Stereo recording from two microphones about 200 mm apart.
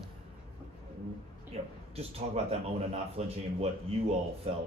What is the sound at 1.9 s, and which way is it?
Speech, 30° right (ahead or behind).